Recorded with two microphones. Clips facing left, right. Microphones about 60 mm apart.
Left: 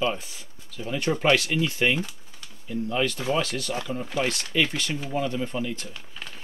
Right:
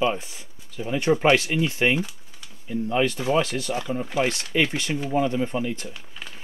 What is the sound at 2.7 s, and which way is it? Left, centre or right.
Speech, right.